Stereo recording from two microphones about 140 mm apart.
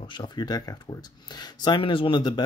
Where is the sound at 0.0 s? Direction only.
35° left (ahead or behind).